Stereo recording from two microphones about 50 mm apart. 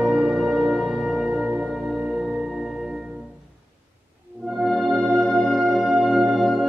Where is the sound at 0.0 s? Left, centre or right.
Centre.